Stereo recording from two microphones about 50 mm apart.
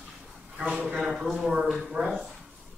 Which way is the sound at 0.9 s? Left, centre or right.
Centre.